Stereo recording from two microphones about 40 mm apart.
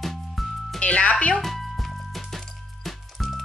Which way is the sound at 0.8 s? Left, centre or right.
Left.